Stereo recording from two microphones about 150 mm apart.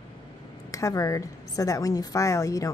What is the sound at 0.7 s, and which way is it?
A woman's voice, 20° left (ahead or behind).